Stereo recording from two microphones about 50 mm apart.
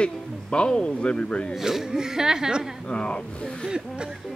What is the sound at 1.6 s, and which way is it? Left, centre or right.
Speech, centre.